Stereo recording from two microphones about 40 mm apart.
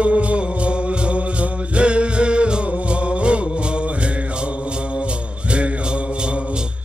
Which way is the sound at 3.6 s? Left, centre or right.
Right.